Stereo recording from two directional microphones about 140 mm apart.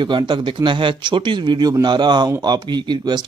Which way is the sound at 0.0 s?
35° right (ahead or behind).